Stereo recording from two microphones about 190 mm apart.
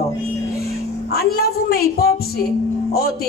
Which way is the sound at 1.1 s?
55° left (ahead or behind).